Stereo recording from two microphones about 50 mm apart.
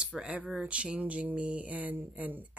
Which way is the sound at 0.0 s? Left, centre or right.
Centre.